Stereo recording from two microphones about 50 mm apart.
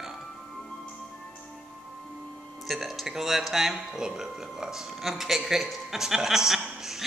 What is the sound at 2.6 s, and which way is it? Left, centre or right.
A woman's voice, centre.